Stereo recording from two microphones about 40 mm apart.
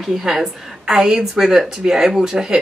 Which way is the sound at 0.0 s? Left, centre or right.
Centre.